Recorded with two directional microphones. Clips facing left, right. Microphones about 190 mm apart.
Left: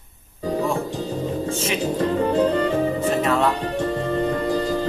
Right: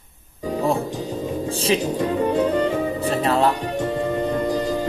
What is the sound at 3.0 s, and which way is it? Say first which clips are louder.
Music: even; 35° right (ahead or behind).